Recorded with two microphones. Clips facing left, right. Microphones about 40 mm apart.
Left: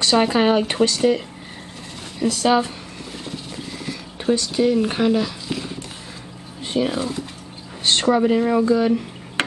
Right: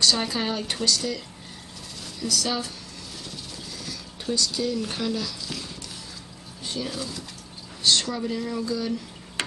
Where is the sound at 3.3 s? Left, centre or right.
Left.